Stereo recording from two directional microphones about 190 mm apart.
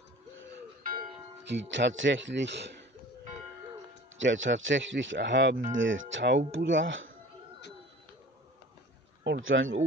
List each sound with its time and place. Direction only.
1.4 s speech: 65° right (ahead or behind)
4.2 s speech: 80° right
5.7 s speech: 90° right
9.2 s speech: 75° right (ahead or behind)